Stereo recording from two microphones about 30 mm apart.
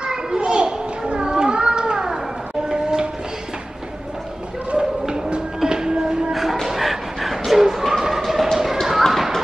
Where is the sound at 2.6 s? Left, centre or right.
Right.